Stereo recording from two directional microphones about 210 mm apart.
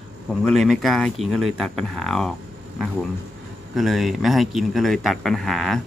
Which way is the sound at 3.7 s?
Centre (ahead or behind).